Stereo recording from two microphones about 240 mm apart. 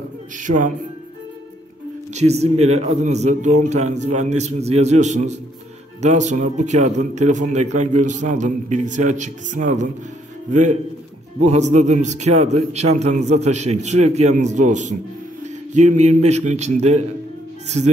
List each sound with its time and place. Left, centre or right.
0.4 s speech: right
2.1 s a man's voice: right